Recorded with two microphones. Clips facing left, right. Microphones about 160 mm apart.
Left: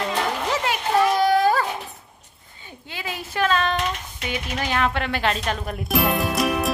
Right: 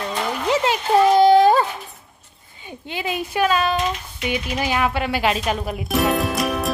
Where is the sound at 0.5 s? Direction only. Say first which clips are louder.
Right 5 dB; 25° right (ahead or behind).